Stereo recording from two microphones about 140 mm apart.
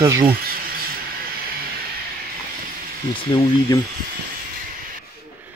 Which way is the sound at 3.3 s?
30° left (ahead or behind).